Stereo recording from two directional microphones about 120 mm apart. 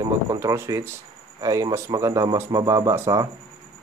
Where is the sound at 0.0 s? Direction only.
30° right (ahead or behind).